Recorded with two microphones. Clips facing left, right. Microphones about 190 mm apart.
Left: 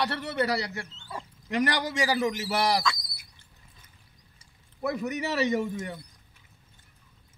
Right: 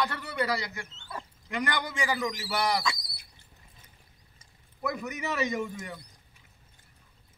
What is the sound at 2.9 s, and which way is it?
Bird, 35° right (ahead or behind).